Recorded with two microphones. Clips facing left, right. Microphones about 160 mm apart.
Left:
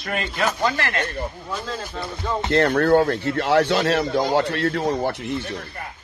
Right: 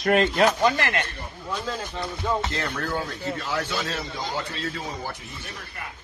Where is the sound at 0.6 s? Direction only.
15° right (ahead or behind).